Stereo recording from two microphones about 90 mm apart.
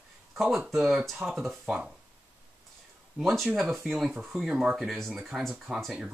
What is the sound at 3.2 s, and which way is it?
Speech, centre (ahead or behind).